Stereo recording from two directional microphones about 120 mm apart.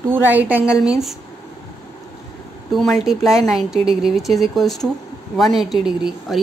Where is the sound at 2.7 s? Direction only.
Centre (ahead or behind).